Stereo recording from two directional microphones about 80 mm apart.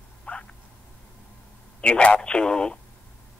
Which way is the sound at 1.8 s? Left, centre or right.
Centre.